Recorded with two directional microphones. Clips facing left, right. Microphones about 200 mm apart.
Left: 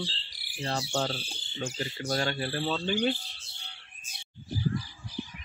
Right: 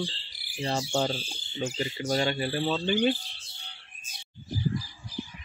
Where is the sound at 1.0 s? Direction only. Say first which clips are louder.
Right 3 dB; 10° right (ahead or behind).